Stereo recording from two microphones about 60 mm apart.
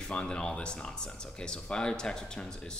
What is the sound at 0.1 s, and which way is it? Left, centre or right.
Speech, centre.